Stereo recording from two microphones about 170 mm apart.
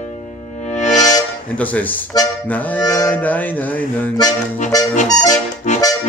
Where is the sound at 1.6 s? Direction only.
10° left (ahead or behind).